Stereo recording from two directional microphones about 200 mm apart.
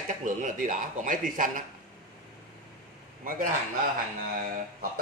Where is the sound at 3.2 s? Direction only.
45° right (ahead or behind).